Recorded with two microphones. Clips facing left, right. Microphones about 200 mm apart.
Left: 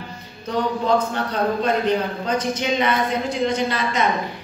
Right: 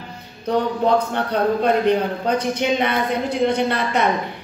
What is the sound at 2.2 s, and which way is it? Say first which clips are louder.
A woman's voice: right 3 dB; 60° right (ahead or behind).